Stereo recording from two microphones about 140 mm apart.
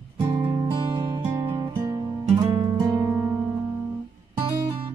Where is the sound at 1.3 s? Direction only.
20° right (ahead or behind).